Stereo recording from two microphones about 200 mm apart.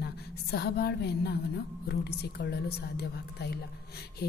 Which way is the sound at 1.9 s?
55° left (ahead or behind).